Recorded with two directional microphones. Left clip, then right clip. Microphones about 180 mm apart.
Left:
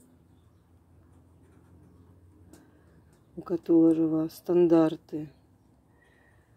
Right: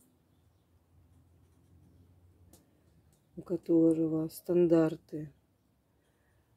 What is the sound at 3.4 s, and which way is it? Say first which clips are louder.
Speech: left 5 dB; 5° right (ahead or behind).